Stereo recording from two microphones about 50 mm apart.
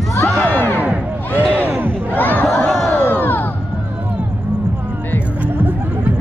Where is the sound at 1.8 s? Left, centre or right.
Right.